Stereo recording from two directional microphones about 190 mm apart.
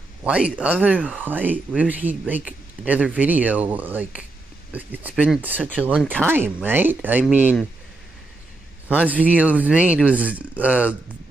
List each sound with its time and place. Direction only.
0.2 s speech: 5° right (ahead or behind)
8.8 s speech: 10° right (ahead or behind)